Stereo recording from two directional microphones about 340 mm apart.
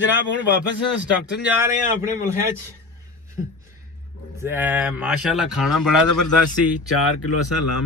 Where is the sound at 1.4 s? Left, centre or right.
Centre.